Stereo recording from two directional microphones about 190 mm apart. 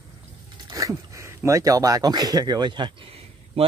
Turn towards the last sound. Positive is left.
turn(degrees=-30)  # may be behind; listen again after turning